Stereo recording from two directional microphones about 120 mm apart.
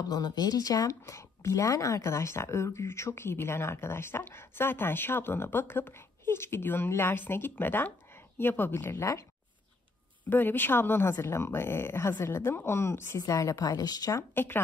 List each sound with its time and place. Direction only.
0.1 s speech: 35° left (ahead or behind)
10.3 s speech: 15° left (ahead or behind); by 14.2 s 30° left (ahead or behind)
14.3 s speech: 20° left (ahead or behind)